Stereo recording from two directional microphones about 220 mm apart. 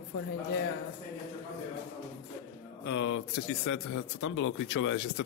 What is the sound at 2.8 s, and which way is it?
Speech, 55° left (ahead or behind).